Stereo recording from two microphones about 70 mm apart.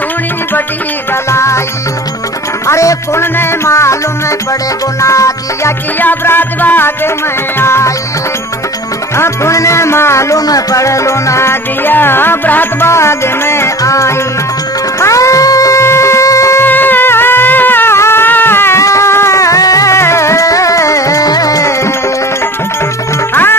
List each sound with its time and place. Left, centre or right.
1.3 s music: left
2.6 s music: left
5.0 s music: left
5.9 s music: left
7.5 s music: left
9.1 s music: left
10.3 s music: left
11.8 s music: left
16.6 s a sound: left
18.8 s music: left
20.0 s music: left